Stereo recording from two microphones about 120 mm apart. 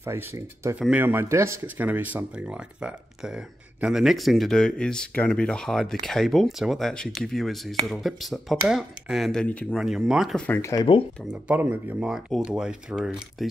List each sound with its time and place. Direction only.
0.0 s speech: 20° right (ahead or behind); by 9.8 s 10° left (ahead or behind)
9.8 s speech: 5° right (ahead or behind)
10.3 s speech: 10° left (ahead or behind)
10.6 s speech: 30° left (ahead or behind)
11.4 s speech: 15° right (ahead or behind)